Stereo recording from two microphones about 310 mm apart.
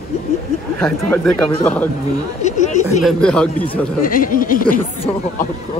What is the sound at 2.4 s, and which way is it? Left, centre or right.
Chatter, left.